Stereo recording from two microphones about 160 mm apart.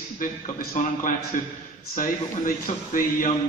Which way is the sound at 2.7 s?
45° left (ahead or behind).